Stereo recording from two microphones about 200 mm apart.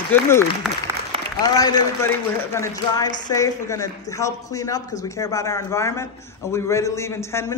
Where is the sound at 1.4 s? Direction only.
20° left (ahead or behind).